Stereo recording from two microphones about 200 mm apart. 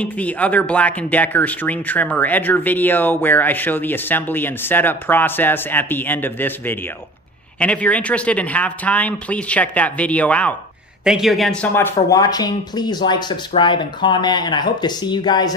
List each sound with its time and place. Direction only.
0.0 s speech: 5° left (ahead or behind)